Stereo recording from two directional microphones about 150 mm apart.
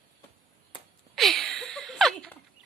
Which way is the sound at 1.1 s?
Centre (ahead or behind).